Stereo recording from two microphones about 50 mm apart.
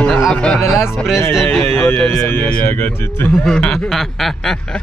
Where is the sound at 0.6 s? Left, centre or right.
Centre.